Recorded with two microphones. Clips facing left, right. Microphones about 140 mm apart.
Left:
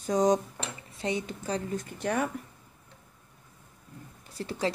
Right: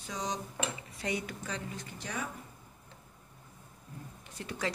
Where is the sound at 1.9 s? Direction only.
55° left (ahead or behind).